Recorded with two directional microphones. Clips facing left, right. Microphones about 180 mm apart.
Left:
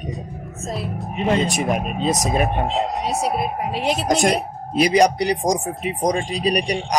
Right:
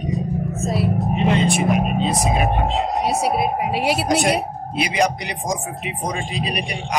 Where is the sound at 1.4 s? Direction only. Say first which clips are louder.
Right 3 dB; 40° left (ahead or behind).